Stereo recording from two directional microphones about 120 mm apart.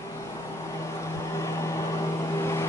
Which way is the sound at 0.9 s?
25° left (ahead or behind).